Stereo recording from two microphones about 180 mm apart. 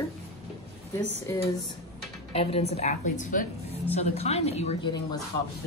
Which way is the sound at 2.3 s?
35° left (ahead or behind).